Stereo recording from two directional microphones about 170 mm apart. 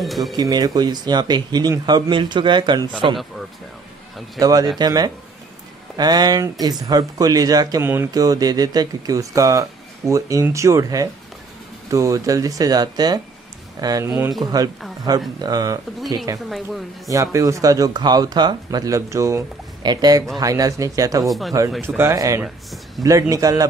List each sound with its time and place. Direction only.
0.2 s speech: 25° right (ahead or behind)
4.4 s speech: 20° right (ahead or behind)
16.4 s speech: centre (ahead or behind)
17.1 s speech: 20° right (ahead or behind)
21.3 s speech: centre (ahead or behind)
21.8 s speech: 15° right (ahead or behind)
22.4 s speech: centre (ahead or behind)
23.0 s speech: 20° right (ahead or behind)